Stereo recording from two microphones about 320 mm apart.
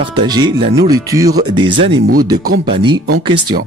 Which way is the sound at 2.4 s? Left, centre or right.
Right.